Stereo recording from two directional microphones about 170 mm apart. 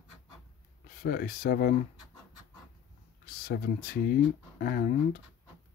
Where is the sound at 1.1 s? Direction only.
60° left (ahead or behind).